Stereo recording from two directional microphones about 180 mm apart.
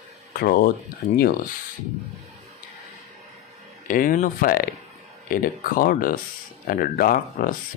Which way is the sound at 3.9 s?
50° left (ahead or behind).